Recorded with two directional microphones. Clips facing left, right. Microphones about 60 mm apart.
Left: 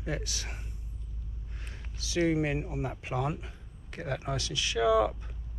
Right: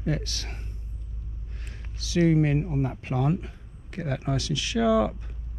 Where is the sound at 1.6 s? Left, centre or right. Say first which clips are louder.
Right 1 dB; left.